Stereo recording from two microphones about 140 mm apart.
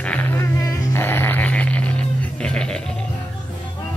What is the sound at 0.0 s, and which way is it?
Music, 10° left (ahead or behind).